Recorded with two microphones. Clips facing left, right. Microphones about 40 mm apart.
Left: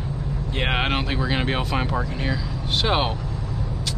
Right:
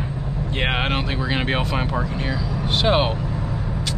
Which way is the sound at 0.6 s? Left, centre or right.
Centre.